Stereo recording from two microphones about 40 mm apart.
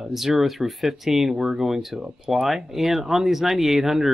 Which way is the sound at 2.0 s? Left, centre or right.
Centre.